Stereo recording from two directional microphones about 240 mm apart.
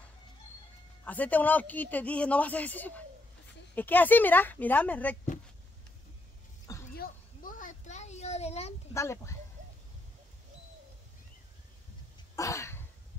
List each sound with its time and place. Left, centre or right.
1.0 s speech: centre
7.0 s a sound: left
8.9 s speech: centre
12.4 s cough: centre